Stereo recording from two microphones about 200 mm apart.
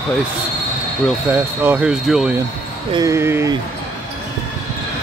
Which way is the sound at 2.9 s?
15° right (ahead or behind).